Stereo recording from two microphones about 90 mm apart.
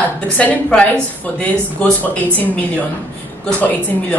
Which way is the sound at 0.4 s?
15° left (ahead or behind).